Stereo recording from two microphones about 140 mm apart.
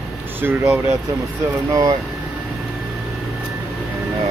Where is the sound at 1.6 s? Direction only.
25° right (ahead or behind).